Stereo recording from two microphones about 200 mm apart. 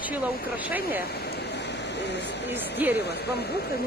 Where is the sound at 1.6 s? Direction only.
60° left (ahead or behind).